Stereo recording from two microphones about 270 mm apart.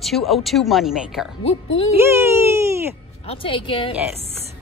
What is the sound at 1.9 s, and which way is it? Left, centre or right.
Baby cry, centre.